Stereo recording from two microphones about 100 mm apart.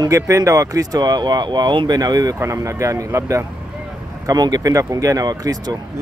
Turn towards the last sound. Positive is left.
turn(degrees=-40)  # may be behind; listen again after turning